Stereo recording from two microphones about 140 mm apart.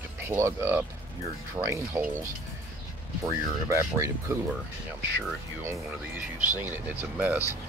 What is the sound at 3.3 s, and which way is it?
Speech, 20° right (ahead or behind).